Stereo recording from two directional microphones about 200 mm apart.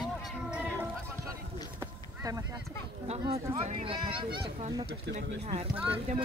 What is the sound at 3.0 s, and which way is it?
Speech, 30° right (ahead or behind).